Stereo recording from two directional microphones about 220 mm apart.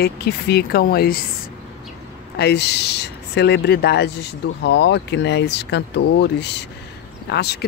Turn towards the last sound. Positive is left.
turn(degrees=50)  # may be behind; listen again after turning